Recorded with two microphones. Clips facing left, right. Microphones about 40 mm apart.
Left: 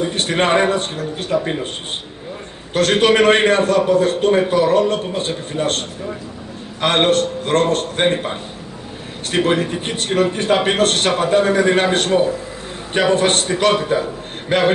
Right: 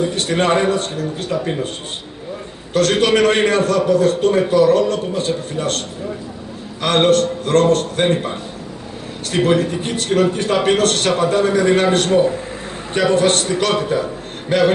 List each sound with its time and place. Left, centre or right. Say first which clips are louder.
0.1 s a man's voice: even; left
2.7 s a man's voice: even; left